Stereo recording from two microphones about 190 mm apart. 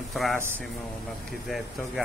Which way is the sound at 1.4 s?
Centre (ahead or behind).